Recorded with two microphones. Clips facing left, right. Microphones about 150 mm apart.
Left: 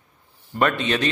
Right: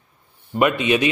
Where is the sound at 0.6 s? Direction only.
10° right (ahead or behind).